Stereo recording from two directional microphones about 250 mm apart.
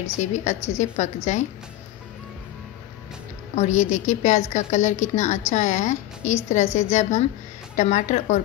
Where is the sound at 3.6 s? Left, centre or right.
Left.